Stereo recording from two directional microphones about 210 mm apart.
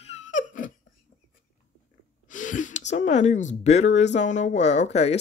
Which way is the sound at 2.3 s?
40° left (ahead or behind).